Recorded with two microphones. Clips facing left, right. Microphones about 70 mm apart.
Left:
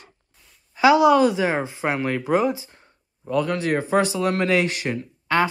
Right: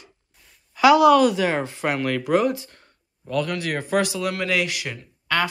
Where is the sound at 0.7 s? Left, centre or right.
Left.